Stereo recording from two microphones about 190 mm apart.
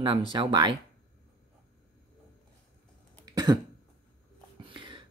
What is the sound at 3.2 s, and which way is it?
Cough, 20° right (ahead or behind).